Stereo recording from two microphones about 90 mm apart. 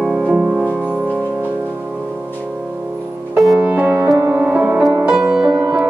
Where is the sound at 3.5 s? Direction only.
15° right (ahead or behind).